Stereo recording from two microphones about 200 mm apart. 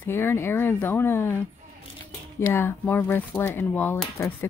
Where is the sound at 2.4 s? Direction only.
10° left (ahead or behind).